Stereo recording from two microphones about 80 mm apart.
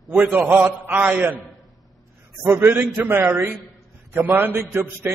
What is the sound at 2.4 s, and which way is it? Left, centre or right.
A man's voice, right.